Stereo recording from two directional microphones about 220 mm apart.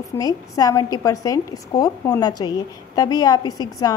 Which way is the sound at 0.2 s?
15° left (ahead or behind).